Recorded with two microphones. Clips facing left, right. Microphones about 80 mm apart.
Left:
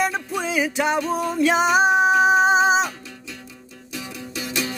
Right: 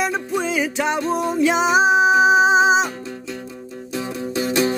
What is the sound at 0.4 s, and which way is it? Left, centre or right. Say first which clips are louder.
Music: left 1 dB; centre.